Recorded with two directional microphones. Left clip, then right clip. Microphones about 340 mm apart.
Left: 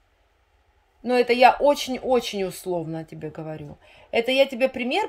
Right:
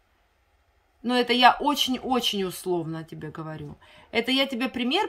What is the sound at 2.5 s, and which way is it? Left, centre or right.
Speech, right.